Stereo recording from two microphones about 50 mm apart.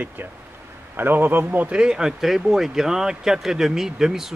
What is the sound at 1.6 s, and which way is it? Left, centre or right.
Speech, centre.